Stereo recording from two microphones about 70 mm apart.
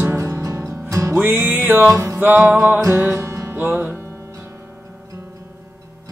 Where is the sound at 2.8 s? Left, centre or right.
Right.